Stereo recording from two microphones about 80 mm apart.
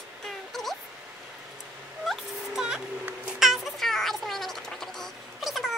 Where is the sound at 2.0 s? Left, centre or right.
Centre.